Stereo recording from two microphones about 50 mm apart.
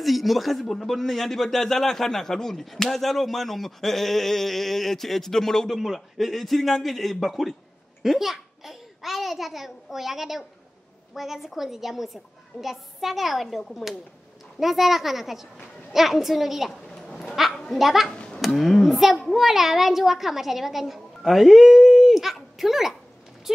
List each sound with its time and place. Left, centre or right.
0.0 s a child's voice: centre
16.9 s dog: centre
17.7 s speech: centre
18.1 s a sound: centre
18.4 s speech: centre